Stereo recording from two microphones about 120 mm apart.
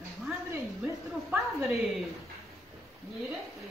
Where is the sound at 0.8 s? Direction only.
5° right (ahead or behind).